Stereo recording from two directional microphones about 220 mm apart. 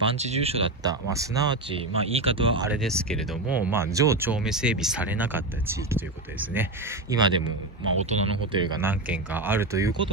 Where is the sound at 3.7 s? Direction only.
15° right (ahead or behind).